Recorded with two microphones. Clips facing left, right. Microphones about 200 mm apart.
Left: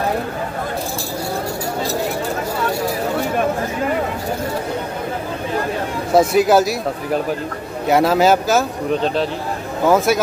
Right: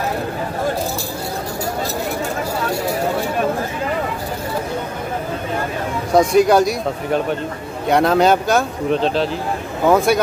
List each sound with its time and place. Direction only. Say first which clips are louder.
6.1 s speech: even; 5° left (ahead or behind)